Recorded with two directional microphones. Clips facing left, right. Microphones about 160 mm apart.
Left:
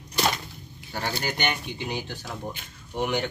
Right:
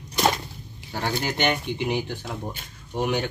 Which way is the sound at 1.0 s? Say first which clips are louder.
Right 3 dB; 20° right (ahead or behind).